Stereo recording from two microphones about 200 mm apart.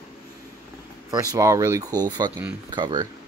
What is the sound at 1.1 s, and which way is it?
Speech, 15° right (ahead or behind).